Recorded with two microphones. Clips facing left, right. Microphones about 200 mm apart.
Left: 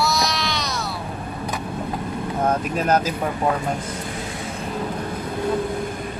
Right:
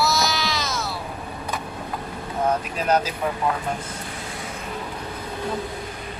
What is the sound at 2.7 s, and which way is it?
Speech, 45° left (ahead or behind).